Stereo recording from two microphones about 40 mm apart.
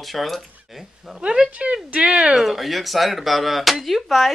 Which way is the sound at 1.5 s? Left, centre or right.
Right.